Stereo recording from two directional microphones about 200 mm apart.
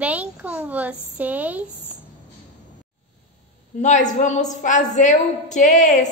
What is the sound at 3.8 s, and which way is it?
A woman's voice, 40° left (ahead or behind).